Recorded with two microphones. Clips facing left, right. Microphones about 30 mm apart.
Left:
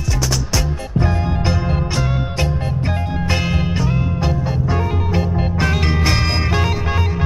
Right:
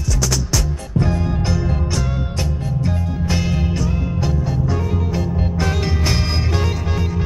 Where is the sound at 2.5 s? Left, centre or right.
Left.